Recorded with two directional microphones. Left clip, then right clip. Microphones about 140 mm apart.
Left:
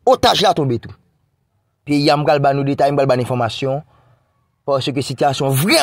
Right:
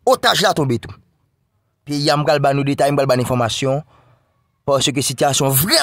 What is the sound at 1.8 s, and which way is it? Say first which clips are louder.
A man's voice: left 2 dB; 5° left (ahead or behind).